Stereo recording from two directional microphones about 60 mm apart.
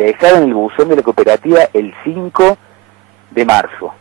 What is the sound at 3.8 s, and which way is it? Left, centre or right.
Speech, left.